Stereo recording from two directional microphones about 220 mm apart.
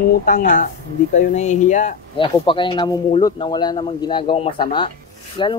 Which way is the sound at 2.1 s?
25° left (ahead or behind).